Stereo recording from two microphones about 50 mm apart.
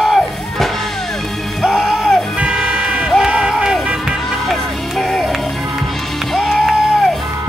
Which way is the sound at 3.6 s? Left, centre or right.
Centre.